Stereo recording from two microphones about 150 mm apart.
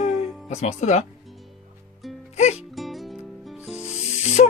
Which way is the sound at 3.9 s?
50° left (ahead or behind).